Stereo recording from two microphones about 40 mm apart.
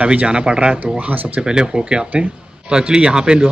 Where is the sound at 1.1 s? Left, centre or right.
Right.